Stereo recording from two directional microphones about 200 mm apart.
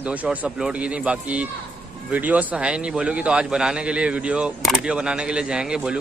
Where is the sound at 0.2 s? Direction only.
5° right (ahead or behind).